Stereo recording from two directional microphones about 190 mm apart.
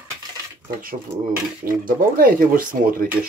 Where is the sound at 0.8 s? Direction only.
45° right (ahead or behind).